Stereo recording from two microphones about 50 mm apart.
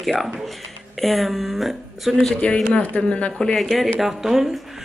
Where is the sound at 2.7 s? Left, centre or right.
Left.